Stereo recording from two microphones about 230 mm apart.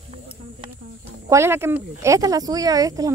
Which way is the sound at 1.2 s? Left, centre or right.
Centre.